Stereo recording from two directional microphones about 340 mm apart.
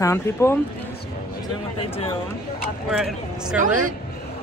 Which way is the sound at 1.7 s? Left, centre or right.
Centre.